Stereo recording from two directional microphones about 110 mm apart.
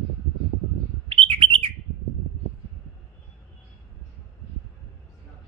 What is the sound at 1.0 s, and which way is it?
Bird, 55° right (ahead or behind).